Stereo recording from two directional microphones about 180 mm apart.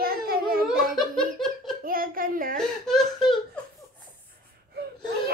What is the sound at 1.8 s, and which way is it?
Speech, 50° right (ahead or behind).